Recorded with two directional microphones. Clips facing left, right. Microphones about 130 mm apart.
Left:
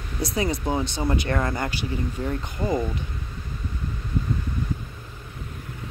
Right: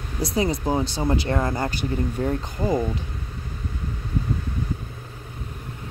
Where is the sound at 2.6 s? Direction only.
10° right (ahead or behind).